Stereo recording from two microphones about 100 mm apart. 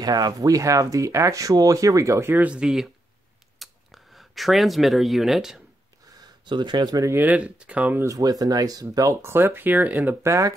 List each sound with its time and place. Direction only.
0.0 s speech: 40° right (ahead or behind); by 2.5 s 20° right (ahead or behind)
2.5 s speech: 5° right (ahead or behind)
3.5 s a sound: centre (ahead or behind)
6.4 s speech: 50° right (ahead or behind)
7.1 s speech: 20° right (ahead or behind)
8.0 s speech: 35° right (ahead or behind); by 10.3 s 20° right (ahead or behind)